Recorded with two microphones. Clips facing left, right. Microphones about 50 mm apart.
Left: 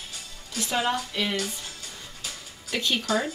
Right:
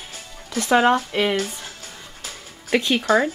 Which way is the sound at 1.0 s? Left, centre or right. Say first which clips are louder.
Right 7 dB; right.